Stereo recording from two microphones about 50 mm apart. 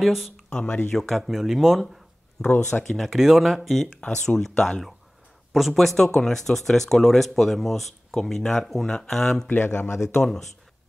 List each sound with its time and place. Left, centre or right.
0.0 s speech: centre
2.4 s speech: centre
3.1 s speech: centre
5.5 s speech: centre
9.8 s speech: left
10.0 s speech: centre